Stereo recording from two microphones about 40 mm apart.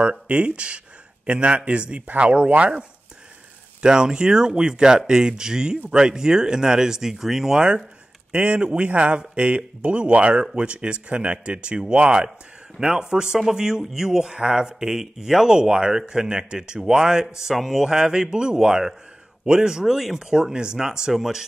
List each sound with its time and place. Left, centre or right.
0.0 s speech: right
3.8 s speech: centre
12.7 s speech: centre
13.0 s speech: centre
17.6 s speech: centre
17.8 s speech: centre